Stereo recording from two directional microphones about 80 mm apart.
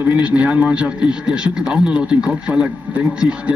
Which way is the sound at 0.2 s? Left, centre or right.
Centre.